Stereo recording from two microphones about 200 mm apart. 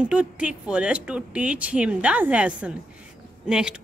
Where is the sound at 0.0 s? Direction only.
5° right (ahead or behind).